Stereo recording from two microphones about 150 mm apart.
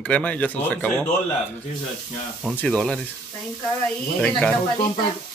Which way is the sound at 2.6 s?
5° left (ahead or behind).